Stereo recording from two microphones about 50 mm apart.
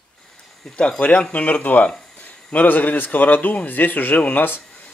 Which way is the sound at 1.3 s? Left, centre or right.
Left.